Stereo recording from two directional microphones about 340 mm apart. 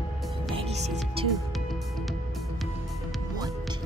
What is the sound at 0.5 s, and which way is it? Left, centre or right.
Music, centre.